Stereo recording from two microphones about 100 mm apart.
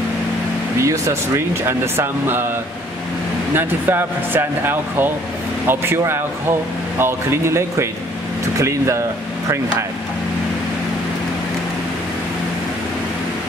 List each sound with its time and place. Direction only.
0.7 s speech: 30° right (ahead or behind)
3.5 s speech: 20° right (ahead or behind)